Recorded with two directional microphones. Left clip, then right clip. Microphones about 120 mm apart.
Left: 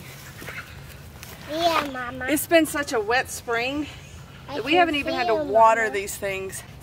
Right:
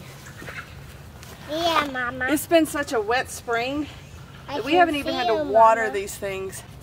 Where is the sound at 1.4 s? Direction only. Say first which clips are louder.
Even; centre (ahead or behind).